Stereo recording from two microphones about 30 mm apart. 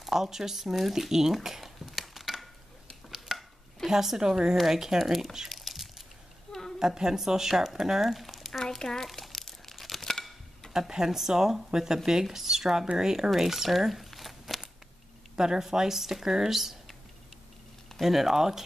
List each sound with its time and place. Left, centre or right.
0.0 s speech: centre
3.3 s chopping: right
3.8 s speech: centre
4.2 s speech: right
4.6 s speech: centre
5.5 s a sound: centre
6.8 s speech: centre
8.3 s a sound: centre
8.6 s crumpling: centre
10.7 s speech: centre
13.4 s speech: centre
14.1 s a sound: centre
15.3 s speech: right
18.0 s speech: centre